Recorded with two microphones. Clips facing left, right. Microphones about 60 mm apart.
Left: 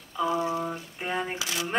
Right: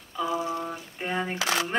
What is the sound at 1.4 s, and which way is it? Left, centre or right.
Speech, right.